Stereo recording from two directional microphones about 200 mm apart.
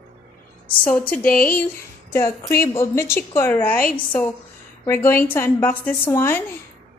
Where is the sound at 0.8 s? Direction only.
10° left (ahead or behind).